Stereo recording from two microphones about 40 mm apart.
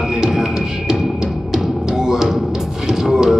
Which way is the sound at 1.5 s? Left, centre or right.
Centre.